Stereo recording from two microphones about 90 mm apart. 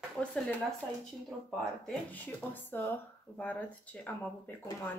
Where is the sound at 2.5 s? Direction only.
20° left (ahead or behind).